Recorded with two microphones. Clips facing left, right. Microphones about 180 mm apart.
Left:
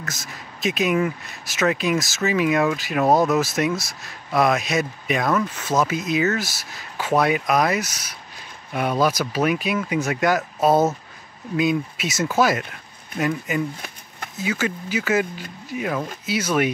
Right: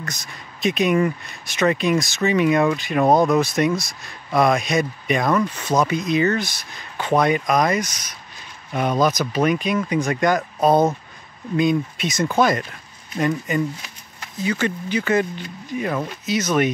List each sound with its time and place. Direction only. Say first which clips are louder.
0.0 s speech: right 1 dB; 5° left (ahead or behind)
13.7 s shuffling cards: left 3 dB; 55° left (ahead or behind)
14.4 s speech: right 2 dB; 5° left (ahead or behind)